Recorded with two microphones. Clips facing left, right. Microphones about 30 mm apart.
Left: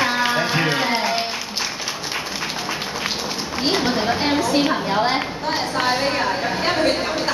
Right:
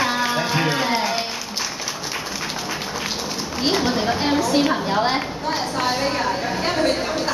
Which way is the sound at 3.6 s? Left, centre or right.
Centre.